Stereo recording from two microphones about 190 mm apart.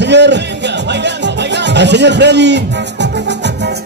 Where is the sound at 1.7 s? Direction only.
65° right (ahead or behind).